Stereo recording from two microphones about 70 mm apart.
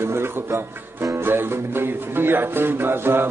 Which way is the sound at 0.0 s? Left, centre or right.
Right.